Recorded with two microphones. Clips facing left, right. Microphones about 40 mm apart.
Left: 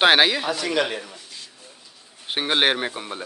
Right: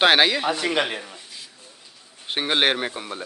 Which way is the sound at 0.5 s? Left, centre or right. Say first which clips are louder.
Even; right.